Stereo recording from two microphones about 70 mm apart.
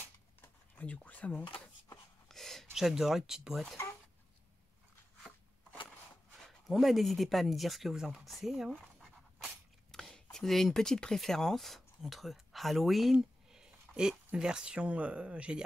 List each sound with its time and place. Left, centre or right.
0.7 s speech: left
2.2 s a sound: centre
2.7 s speech: centre
6.7 s speech: centre
9.8 s a sound: centre
10.3 s speech: centre